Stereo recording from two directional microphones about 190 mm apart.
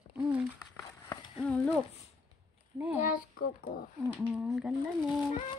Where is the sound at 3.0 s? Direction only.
45° left (ahead or behind).